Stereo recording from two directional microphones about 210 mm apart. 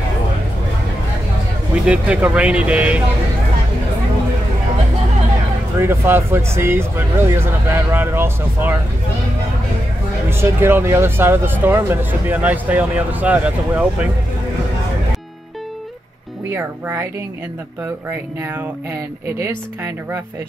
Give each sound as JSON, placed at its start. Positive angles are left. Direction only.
{"t": 1.9, "sound": "speech", "side_deg": -5}
{"t": 5.8, "sound": "speech", "side_deg": -10}
{"t": 10.3, "sound": "speech", "side_deg": -10}
{"t": 16.4, "sound": "speech", "side_deg": -15}
{"t": 19.4, "sound": "speech", "side_deg": -15}